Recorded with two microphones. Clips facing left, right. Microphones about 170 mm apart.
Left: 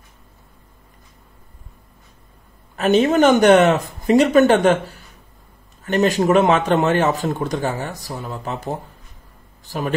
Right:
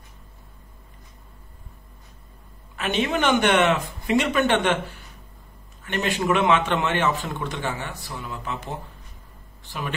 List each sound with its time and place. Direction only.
2.7 s a man's voice: 40° left (ahead or behind)